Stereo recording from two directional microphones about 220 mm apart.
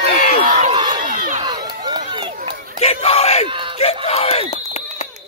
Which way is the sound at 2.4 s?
25° right (ahead or behind).